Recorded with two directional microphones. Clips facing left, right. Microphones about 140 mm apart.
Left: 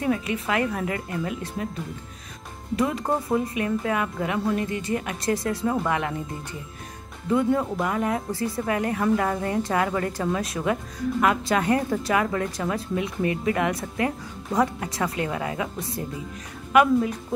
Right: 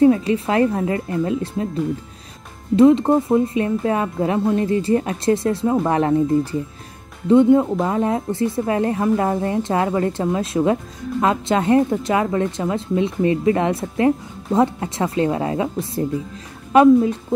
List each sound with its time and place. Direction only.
0.0 s speech: 30° right (ahead or behind)
2.7 s speech: 25° right (ahead or behind)
7.2 s speech: 25° right (ahead or behind)
16.7 s speech: 30° right (ahead or behind)